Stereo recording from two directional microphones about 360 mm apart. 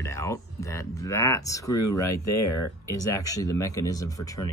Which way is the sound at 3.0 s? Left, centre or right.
Centre.